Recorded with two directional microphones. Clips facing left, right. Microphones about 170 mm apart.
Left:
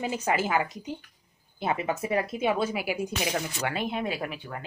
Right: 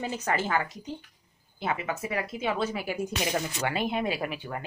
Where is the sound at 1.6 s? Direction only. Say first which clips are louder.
Left 3 dB; 20° left (ahead or behind).